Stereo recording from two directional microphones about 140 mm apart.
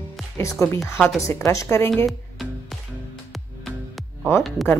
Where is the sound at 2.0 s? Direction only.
Centre (ahead or behind).